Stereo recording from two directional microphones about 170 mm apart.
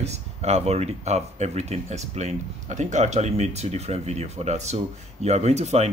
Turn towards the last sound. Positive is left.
turn(degrees=-40)  # may be behind; listen again after turning